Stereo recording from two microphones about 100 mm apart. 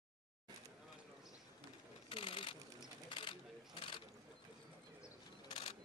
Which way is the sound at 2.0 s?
60° left (ahead or behind).